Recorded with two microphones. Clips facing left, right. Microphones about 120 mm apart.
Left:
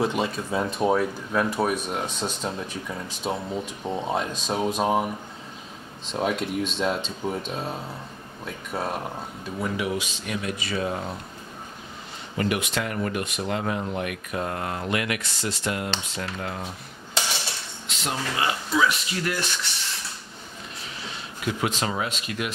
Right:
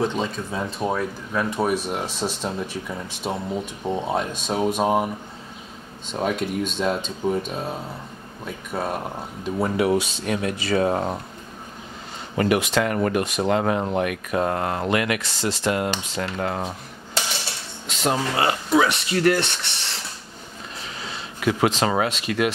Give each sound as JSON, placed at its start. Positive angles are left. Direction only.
{"t": 0.0, "sound": "speech", "side_deg": 10}
{"t": 2.2, "sound": "speech", "side_deg": -15}
{"t": 6.1, "sound": "speech", "side_deg": 0}
{"t": 9.8, "sound": "speech", "side_deg": -35}
{"t": 12.4, "sound": "speech", "side_deg": -80}
{"t": 17.8, "sound": "speech", "side_deg": -45}
{"t": 21.5, "sound": "speech", "side_deg": -90}